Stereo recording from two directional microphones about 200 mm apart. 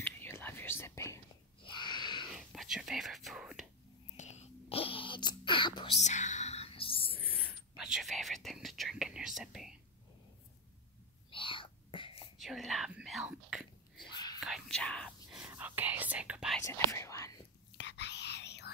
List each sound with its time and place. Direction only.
0.0 s whispering: 10° left (ahead or behind)
1.6 s a sound: 25° left (ahead or behind)
2.3 s whispering: centre (ahead or behind)
4.2 s whispering: 35° left (ahead or behind)
7.3 s whispering: 5° right (ahead or behind)
11.2 s whispering: 25° left (ahead or behind)
12.4 s whispering: centre (ahead or behind)
14.0 s whispering: 20° left (ahead or behind)
14.4 s whispering: centre (ahead or behind)
16.6 s whispering: 15° left (ahead or behind)
17.7 s whispering: 60° left (ahead or behind)